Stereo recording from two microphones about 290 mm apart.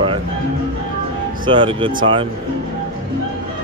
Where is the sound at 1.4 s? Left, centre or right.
Centre.